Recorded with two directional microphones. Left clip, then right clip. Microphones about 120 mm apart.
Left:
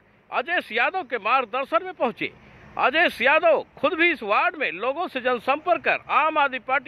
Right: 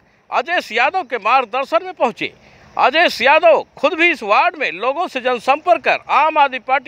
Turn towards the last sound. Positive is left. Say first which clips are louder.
# right 7 dB
turn(degrees=-35)  # may be behind; listen again after turning